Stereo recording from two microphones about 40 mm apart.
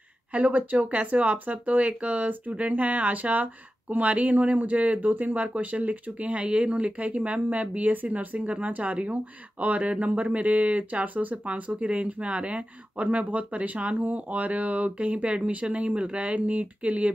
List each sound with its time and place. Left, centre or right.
0.3 s speech: right